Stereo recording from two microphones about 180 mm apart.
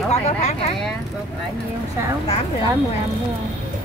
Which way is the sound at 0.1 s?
35° left (ahead or behind).